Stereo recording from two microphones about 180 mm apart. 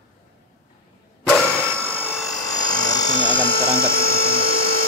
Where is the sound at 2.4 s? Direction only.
20° left (ahead or behind).